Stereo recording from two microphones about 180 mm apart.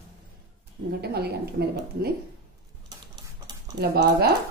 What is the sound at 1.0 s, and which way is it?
Speech, 65° right (ahead or behind).